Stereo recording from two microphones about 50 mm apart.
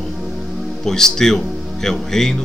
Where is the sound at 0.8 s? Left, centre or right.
Centre.